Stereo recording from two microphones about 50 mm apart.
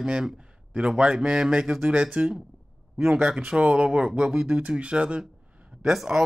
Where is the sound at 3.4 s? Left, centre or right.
Right.